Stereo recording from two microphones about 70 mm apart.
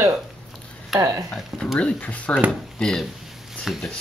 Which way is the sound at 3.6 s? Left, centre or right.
Centre.